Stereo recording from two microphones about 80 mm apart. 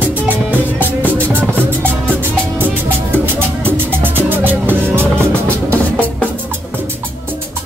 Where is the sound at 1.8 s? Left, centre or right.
Right.